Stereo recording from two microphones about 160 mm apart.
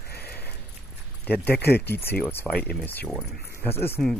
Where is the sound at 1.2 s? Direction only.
10° left (ahead or behind).